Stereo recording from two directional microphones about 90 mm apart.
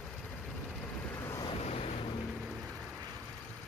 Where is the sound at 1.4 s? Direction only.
85° left.